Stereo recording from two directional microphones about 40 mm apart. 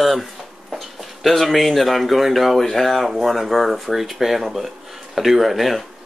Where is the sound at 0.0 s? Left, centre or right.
Centre.